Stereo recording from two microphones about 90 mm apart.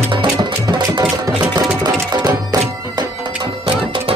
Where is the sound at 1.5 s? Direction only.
50° right (ahead or behind).